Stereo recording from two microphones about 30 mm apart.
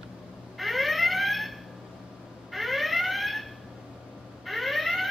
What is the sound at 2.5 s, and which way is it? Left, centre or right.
Alarm, centre.